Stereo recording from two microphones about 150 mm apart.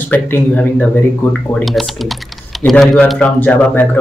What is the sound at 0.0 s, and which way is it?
Speech, 10° left (ahead or behind).